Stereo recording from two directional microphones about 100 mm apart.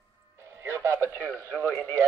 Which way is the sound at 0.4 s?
25° right (ahead or behind).